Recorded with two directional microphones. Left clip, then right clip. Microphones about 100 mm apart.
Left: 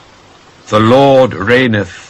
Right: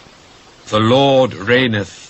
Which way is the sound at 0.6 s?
20° right (ahead or behind).